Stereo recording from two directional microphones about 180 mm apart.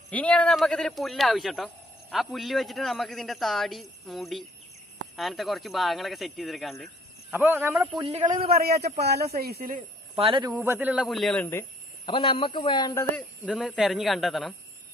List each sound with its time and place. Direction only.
0.1 s speech: 5° left (ahead or behind)
7.3 s a man's voice: 10° right (ahead or behind)
8.0 s speech: 30° right (ahead or behind)
8.5 s speech: 60° right (ahead or behind)
10.1 s speech: 30° right (ahead or behind)
10.6 s a man's voice: 10° right (ahead or behind)
12.1 s a man's voice: 30° left (ahead or behind)
13.5 s speech: 5° right (ahead or behind)